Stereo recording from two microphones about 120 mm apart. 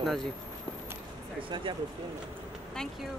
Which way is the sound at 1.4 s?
45° right (ahead or behind).